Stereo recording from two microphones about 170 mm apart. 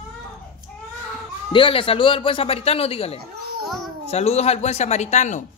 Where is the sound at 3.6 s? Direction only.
Centre (ahead or behind).